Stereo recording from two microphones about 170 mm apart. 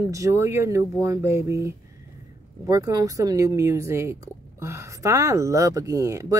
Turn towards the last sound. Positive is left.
turn(degrees=-20)  # may be behind; listen again after turning